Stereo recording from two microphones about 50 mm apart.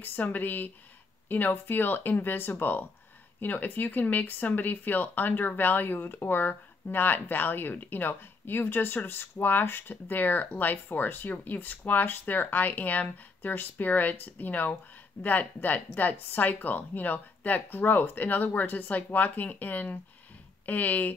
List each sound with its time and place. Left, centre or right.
0.0 s speech: left